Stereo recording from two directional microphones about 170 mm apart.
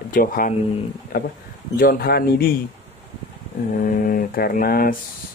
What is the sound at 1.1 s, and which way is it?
Mantra, 55° left (ahead or behind).